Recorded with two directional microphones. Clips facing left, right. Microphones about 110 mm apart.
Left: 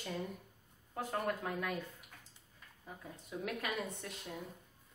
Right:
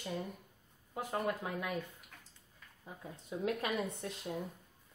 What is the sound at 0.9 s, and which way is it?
Speech, 10° right (ahead or behind).